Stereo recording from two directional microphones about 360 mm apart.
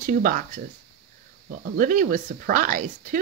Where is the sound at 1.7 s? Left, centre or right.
Right.